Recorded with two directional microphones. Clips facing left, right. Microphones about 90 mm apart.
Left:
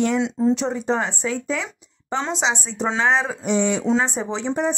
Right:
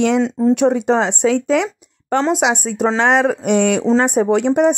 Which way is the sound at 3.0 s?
70° right (ahead or behind).